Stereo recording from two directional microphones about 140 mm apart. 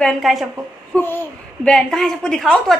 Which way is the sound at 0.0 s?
Centre (ahead or behind).